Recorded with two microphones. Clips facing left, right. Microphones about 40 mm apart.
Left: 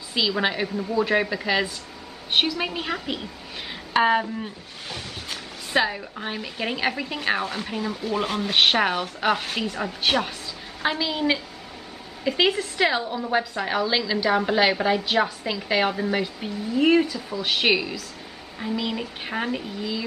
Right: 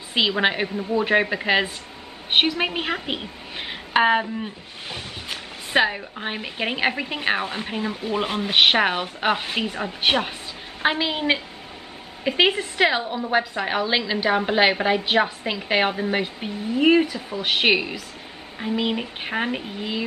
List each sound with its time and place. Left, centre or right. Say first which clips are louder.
0.1 s a woman's voice: right 3 dB; right
19.8 s a woman's voice: right 2 dB; right